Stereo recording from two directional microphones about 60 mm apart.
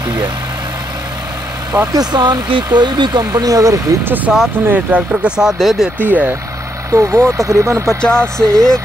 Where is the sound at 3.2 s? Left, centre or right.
Right.